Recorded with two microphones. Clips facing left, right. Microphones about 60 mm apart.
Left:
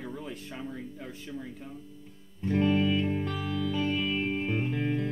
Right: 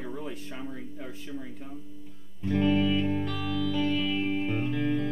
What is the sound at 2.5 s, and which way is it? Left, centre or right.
Music, left.